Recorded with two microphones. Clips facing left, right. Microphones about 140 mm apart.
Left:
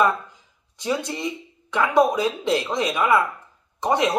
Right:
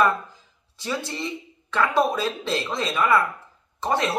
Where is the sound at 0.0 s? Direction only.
20° left (ahead or behind).